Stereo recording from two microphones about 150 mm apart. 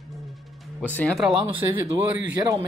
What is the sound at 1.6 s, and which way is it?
Speech, 20° right (ahead or behind).